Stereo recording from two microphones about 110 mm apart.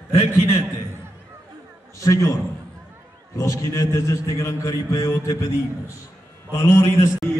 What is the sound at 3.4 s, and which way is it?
A man's voice, 25° left (ahead or behind).